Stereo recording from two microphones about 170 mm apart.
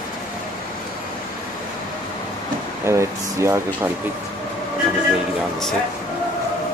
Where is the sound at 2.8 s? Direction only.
15° right (ahead or behind).